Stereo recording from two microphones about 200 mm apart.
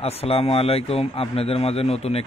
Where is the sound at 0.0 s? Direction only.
30° left (ahead or behind).